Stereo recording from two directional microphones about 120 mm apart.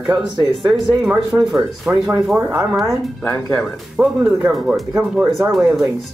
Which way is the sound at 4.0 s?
20° right (ahead or behind).